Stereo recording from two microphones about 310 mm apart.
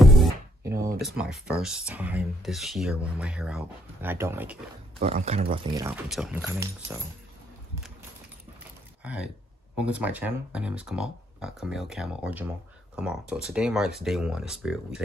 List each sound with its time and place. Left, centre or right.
0.0 s music: centre
1.0 s speech: centre
5.0 s speech: centre
6.0 s speech: centre
9.8 s speech: centre